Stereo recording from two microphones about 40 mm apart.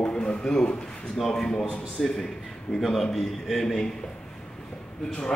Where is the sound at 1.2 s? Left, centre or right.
Centre.